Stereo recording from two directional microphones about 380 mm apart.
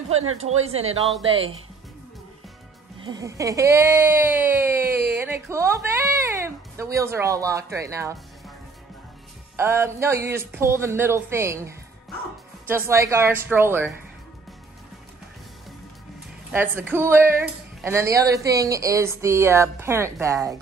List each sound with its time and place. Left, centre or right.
0.1 s speech: right
3.0 s a woman's voice: centre
9.6 s speech: centre
16.5 s speech: centre